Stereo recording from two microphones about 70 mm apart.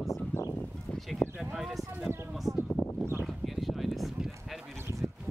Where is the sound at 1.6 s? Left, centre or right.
Centre.